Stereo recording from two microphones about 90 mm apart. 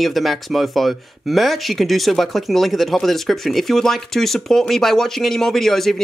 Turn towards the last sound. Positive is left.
turn(degrees=5)  # may be behind; listen again after turning